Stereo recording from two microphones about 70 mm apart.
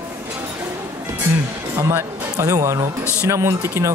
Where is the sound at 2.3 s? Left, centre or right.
Right.